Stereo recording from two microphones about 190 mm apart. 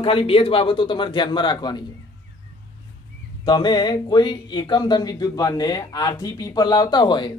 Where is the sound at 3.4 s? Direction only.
20° left (ahead or behind).